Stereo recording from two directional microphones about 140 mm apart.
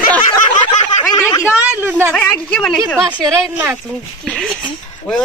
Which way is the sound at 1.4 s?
10° right (ahead or behind).